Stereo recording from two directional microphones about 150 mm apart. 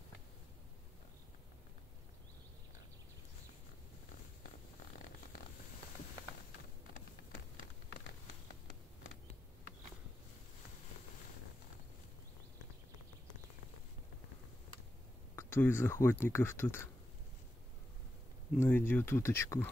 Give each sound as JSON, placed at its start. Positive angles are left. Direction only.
{"t": 15.3, "sound": "speech", "side_deg": 15}
{"t": 18.6, "sound": "speech", "side_deg": 15}